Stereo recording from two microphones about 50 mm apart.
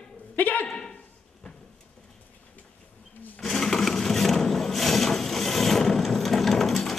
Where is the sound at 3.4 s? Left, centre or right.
Centre.